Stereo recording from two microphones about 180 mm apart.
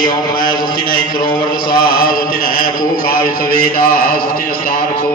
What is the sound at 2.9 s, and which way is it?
A man's voice, 55° left (ahead or behind).